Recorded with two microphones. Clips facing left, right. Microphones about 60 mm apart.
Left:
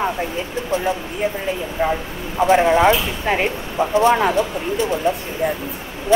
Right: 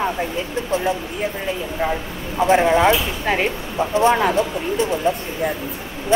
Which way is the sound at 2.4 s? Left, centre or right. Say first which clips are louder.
Left 1 dB; left.